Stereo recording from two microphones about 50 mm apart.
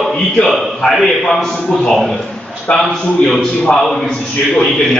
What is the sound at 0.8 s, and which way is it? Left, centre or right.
Speech, centre.